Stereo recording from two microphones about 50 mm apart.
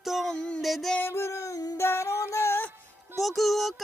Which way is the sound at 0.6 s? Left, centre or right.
Centre.